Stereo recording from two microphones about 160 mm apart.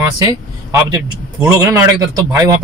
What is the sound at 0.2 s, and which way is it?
A man's voice, 20° right (ahead or behind).